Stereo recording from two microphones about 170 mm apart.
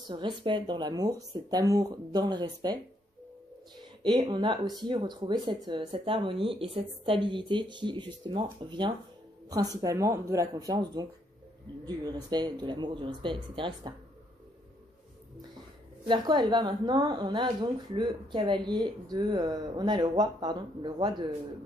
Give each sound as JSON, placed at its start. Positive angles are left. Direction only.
{"t": 0.1, "sound": "speech", "side_deg": -30}
{"t": 4.0, "sound": "speech", "side_deg": -25}
{"t": 16.1, "sound": "speech", "side_deg": -25}